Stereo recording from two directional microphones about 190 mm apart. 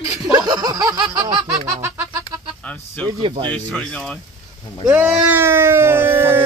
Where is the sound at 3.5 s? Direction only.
5° left (ahead or behind).